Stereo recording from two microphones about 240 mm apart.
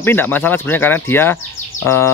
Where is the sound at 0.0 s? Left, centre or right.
Centre.